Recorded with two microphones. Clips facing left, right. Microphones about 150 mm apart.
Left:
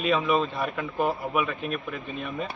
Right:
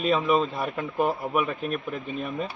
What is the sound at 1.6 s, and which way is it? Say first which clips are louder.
Speech: right 2 dB; 40° right (ahead or behind).